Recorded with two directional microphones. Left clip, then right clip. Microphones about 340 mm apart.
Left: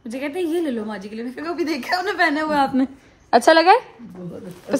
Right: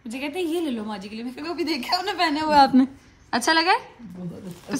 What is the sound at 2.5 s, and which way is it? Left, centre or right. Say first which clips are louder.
Speech: right 3 dB; right.